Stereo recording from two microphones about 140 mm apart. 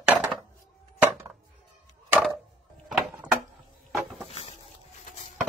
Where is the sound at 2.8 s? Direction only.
Centre (ahead or behind).